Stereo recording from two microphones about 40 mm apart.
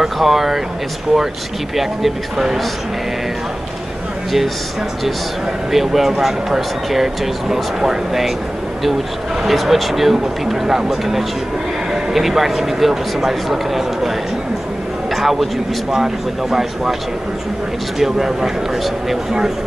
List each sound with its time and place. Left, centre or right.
0.0 s speech: centre
1.8 s speech: centre
5.7 s speech: centre
9.5 s speech: centre
15.1 s a man's voice: centre
17.9 s speech: centre